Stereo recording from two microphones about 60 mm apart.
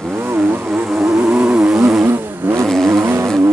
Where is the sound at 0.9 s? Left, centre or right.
Centre.